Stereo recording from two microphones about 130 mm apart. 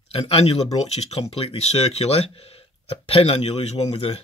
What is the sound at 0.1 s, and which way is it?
Speech, 50° left (ahead or behind).